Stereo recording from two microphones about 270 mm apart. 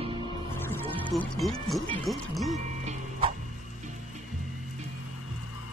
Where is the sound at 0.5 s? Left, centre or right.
Centre.